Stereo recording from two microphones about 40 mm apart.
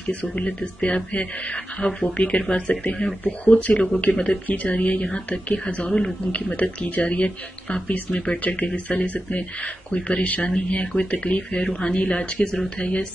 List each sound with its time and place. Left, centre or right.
0.1 s speech: left
5.1 s speech: left